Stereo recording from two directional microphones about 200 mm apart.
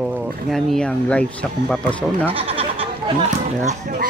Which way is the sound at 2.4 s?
30° right (ahead or behind).